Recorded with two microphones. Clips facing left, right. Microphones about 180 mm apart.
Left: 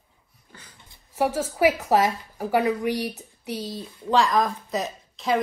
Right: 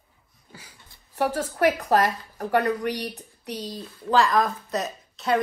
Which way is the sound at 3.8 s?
20° left (ahead or behind).